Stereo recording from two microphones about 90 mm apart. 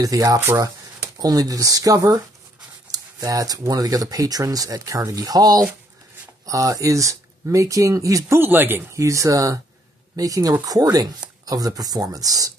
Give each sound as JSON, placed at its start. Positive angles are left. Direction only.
{"t": 0.0, "sound": "speech", "side_deg": -40}
{"t": 8.4, "sound": "a man's voice", "side_deg": -20}
{"t": 8.9, "sound": "speech", "side_deg": -35}